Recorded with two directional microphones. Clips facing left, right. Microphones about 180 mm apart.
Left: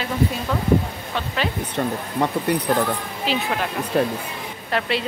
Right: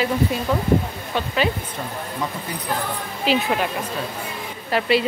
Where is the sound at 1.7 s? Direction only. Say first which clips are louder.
Left 6 dB; 70° left (ahead or behind).